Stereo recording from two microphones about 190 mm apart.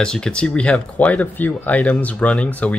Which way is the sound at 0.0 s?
5° left (ahead or behind).